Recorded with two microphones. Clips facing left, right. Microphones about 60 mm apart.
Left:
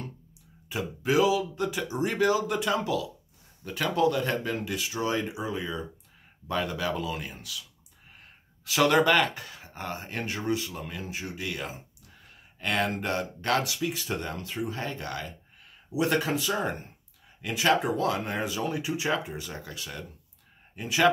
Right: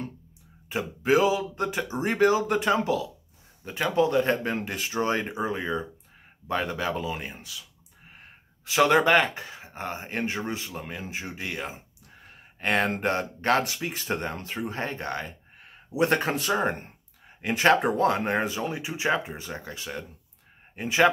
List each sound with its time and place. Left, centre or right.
0.7 s speech: right
18.6 s speech: right